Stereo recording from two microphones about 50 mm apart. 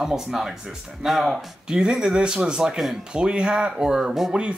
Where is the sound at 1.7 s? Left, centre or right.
Centre.